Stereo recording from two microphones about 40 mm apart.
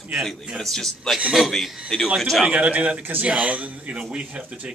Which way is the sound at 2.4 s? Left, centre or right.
Right.